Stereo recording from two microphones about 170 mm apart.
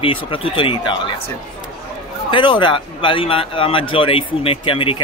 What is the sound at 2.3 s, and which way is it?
A man's voice, 30° left (ahead or behind).